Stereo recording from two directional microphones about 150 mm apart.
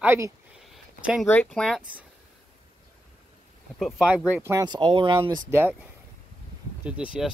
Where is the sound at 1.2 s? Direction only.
10° left (ahead or behind).